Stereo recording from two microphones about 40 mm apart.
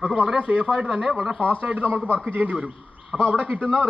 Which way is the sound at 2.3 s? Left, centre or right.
Right.